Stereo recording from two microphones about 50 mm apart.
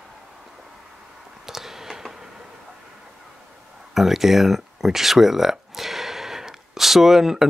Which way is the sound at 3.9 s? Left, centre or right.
Centre.